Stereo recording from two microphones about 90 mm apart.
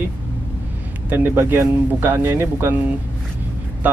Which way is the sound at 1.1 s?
25° right (ahead or behind).